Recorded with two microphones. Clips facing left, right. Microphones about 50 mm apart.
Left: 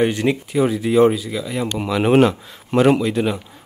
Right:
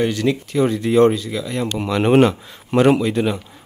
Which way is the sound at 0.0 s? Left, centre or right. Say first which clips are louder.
Left 1 dB; left.